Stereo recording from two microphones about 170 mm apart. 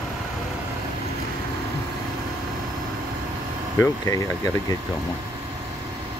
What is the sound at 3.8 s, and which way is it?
Speech, 20° left (ahead or behind).